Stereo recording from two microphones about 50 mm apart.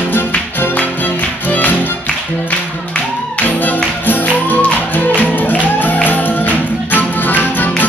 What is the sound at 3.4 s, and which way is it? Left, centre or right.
Music, left.